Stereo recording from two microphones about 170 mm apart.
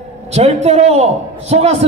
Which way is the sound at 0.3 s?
40° right (ahead or behind).